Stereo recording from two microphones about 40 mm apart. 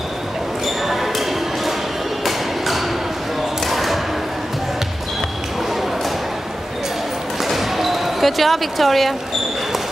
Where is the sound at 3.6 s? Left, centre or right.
Centre.